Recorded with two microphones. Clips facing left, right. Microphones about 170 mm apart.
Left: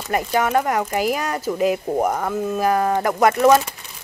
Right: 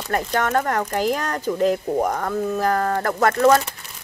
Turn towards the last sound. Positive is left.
turn(degrees=10)  # may be behind; listen again after turning